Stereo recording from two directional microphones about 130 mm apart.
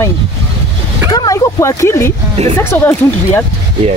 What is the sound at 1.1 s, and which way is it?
Speech, 25° left (ahead or behind).